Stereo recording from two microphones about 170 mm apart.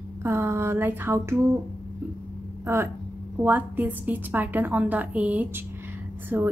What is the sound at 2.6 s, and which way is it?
A woman's voice, 15° right (ahead or behind).